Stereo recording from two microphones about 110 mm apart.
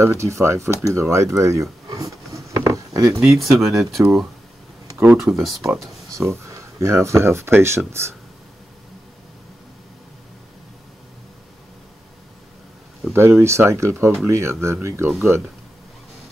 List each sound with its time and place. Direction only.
0.0 s speech: 25° right (ahead or behind)
0.8 s a sound: 25° right (ahead or behind)
3.3 s speech: centre (ahead or behind)
5.4 s speech: centre (ahead or behind)
5.7 s speech: 25° right (ahead or behind)
13.1 s speech: 25° right (ahead or behind)